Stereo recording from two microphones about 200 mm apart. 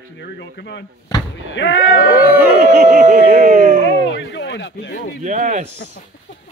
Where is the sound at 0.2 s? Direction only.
60° left (ahead or behind).